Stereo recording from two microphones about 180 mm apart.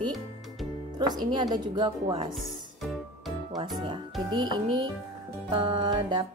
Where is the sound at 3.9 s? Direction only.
25° right (ahead or behind).